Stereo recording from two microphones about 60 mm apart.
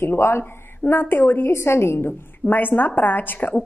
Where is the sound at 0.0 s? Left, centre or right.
Left.